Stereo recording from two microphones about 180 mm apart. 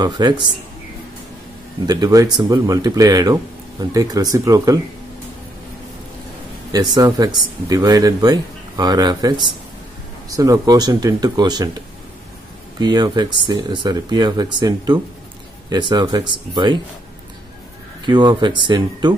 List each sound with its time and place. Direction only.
0.0 s speech: 25° right (ahead or behind)
1.9 s speech: 20° right (ahead or behind)
6.7 s speech: 20° right (ahead or behind)
12.7 s speech: 25° right (ahead or behind)
18.0 s speech: 25° right (ahead or behind)